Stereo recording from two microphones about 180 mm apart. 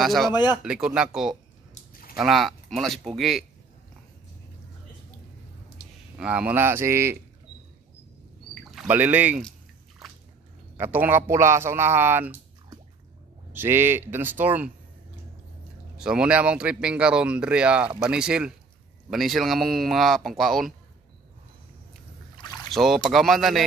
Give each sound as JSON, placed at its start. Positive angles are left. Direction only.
{"t": 0.0, "sound": "speech", "side_deg": 0}
{"t": 0.3, "sound": "speech", "side_deg": 25}
{"t": 0.7, "sound": "speech", "side_deg": -5}
{"t": 1.8, "sound": "a sound", "side_deg": 55}
{"t": 2.1, "sound": "speech", "side_deg": 0}
{"t": 6.1, "sound": "speech", "side_deg": -5}
{"t": 8.7, "sound": "speech", "side_deg": -10}
{"t": 10.8, "sound": "speech", "side_deg": -10}
{"t": 13.5, "sound": "speech", "side_deg": -10}
{"t": 16.0, "sound": "speech", "side_deg": -5}
{"t": 22.7, "sound": "speech", "side_deg": 0}